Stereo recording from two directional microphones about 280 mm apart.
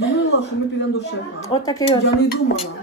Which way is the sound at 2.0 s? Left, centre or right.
Left.